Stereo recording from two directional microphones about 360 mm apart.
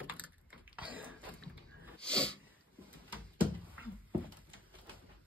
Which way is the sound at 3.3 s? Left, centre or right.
Centre.